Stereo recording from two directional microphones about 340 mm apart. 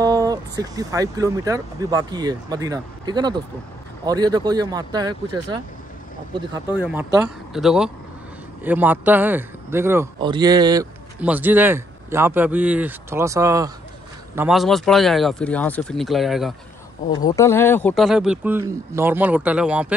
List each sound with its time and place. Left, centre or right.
0.0 s speech: centre
6.8 s speech: centre
17.1 s speech: centre